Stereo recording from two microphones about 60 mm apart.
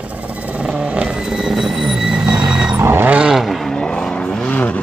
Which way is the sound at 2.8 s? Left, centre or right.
Right.